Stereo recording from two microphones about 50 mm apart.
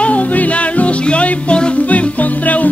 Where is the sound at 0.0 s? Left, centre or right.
Left.